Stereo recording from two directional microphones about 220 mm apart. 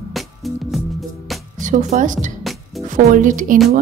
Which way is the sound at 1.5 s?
35° right (ahead or behind).